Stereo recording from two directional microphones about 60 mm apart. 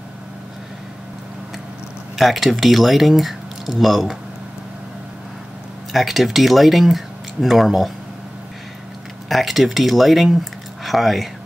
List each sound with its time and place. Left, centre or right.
2.1 s speech: centre
5.9 s speech: centre
9.3 s speech: centre